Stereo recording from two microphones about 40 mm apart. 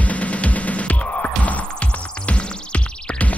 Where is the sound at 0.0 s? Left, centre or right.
Left.